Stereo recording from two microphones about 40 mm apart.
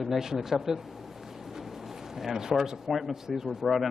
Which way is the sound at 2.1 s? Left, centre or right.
Centre.